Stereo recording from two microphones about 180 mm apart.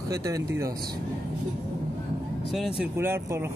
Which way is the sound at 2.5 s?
Centre (ahead or behind).